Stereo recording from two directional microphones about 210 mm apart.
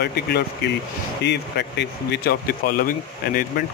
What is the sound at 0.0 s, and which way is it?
Speech, 50° left (ahead or behind).